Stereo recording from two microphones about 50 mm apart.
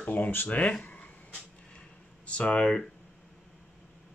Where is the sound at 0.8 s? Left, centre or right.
Left.